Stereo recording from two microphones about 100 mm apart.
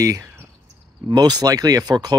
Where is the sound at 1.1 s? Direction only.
40° right (ahead or behind).